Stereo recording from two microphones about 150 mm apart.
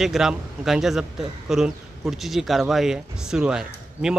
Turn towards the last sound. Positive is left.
turn(degrees=-5)  # may be behind; listen again after turning